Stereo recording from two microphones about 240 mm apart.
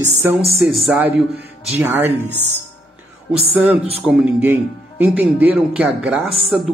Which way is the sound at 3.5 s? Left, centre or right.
Centre.